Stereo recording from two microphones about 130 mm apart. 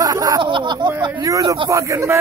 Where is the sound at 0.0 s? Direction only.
25° right (ahead or behind).